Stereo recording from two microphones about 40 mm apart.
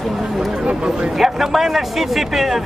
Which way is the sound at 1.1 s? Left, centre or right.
Centre.